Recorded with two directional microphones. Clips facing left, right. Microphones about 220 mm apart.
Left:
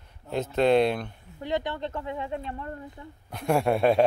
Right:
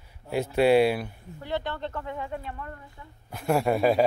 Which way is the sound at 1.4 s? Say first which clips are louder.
Left 2 dB; 15° left (ahead or behind).